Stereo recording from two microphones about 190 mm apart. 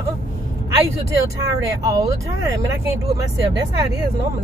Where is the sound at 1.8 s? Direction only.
20° right (ahead or behind).